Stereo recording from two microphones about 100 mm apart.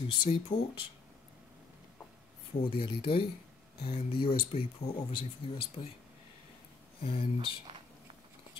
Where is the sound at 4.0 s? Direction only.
90° left.